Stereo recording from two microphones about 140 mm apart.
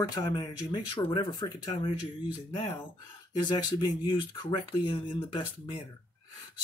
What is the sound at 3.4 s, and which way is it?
Speech, 35° left (ahead or behind).